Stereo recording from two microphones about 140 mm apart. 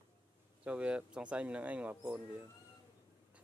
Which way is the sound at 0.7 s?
10° right (ahead or behind).